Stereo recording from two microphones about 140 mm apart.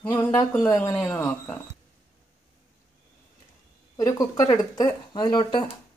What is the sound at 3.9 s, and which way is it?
Speech, 25° left (ahead or behind).